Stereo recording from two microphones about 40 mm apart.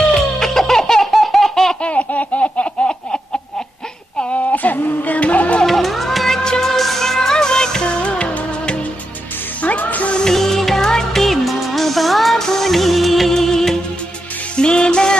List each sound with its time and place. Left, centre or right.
0.2 s laughter: centre
1.8 s laughter: left
4.2 s a sound: left
4.7 s music: left
5.1 s music: left
5.7 s music: centre
6.4 s music: centre
6.7 s music: centre
7.9 s music of bollywood: left
9.6 s music: left
10.3 s music: centre
12.4 s music of bollywood: centre
13.3 s music: centre
14.6 s music: left